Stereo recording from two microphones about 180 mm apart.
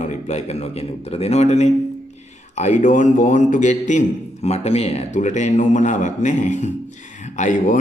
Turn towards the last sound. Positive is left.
turn(degrees=45)  # may be behind; listen again after turning